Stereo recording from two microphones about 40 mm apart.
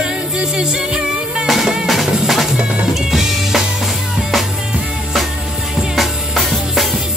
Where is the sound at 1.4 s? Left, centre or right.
Centre.